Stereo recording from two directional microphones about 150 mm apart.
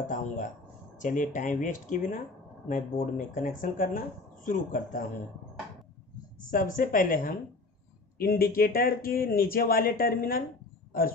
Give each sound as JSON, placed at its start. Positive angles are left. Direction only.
{"t": 0.0, "sound": "speech", "side_deg": 60}
{"t": 6.5, "sound": "speech", "side_deg": 65}
{"t": 8.2, "sound": "speech", "side_deg": 80}